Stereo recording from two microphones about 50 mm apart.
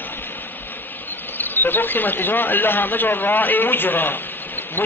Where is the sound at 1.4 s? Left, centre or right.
Left.